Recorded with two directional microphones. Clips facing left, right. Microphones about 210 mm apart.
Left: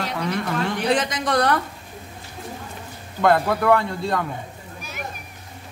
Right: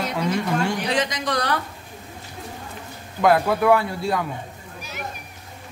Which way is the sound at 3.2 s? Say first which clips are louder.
Right 1 dB; 5° right (ahead or behind).